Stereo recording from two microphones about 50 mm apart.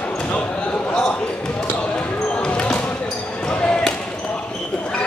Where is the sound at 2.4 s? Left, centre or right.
Left.